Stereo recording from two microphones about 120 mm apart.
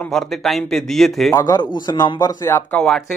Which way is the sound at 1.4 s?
30° left (ahead or behind).